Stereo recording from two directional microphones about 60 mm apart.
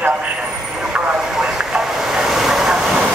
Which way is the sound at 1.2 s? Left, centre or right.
Centre.